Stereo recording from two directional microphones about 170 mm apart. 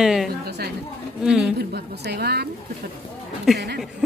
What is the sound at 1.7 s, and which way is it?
Speech, 75° right (ahead or behind).